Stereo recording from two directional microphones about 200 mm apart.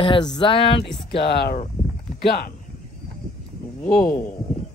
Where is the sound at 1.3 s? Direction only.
55° left (ahead or behind).